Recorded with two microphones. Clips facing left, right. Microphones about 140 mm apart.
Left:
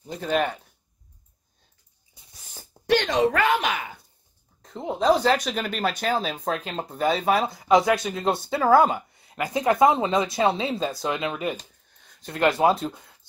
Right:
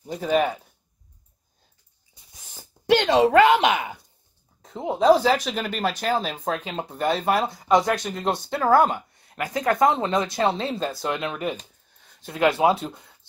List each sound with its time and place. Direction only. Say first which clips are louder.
0.0 s speech: right 3 dB; 10° right (ahead or behind)
3.1 s speech: right 9 dB; 30° right (ahead or behind)
4.6 s speech: right 3 dB; centre (ahead or behind)
9.5 s speech: left 1 dB; 20° left (ahead or behind)
9.8 s speech: left 1 dB; 5° left (ahead or behind)